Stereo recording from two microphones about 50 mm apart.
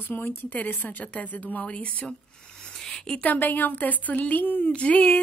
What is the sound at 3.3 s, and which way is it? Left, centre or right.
Speech, left.